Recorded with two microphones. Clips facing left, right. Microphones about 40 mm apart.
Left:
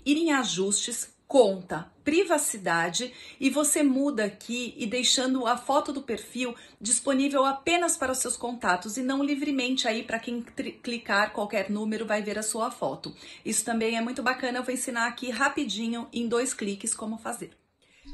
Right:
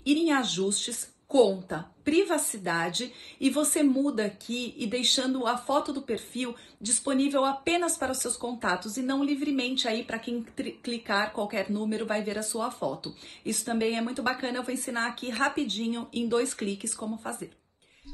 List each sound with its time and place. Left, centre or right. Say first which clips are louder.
0.0 s speech: even; left